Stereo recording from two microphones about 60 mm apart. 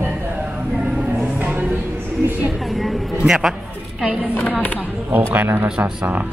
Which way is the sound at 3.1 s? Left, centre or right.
Centre.